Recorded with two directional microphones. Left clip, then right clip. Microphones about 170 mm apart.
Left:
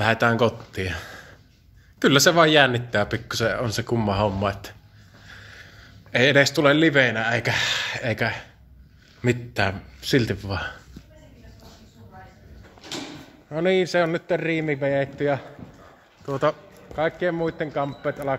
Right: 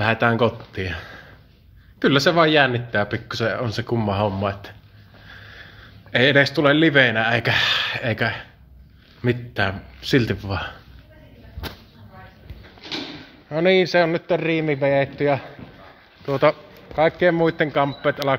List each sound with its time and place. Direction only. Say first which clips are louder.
0.0 s speech: right 1 dB; centre (ahead or behind)
9.9 s speech: right 3 dB; 5° right (ahead or behind)
13.5 s a man's voice: right 4 dB; 15° right (ahead or behind)
14.9 s speech: right 4 dB; 25° right (ahead or behind)
16.9 s a man's voice: right 6 dB; 45° right (ahead or behind); by 18.3 s 70° right (ahead or behind)